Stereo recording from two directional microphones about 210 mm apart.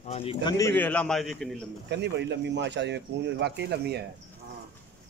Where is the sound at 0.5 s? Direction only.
10° left (ahead or behind).